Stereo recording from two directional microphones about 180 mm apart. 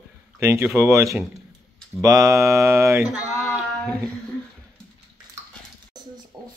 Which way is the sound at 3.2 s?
Centre (ahead or behind).